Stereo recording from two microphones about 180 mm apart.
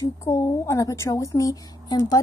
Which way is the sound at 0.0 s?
20° left (ahead or behind).